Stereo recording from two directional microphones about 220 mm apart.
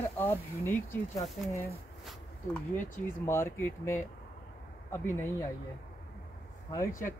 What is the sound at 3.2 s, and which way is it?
Speech, 10° left (ahead or behind).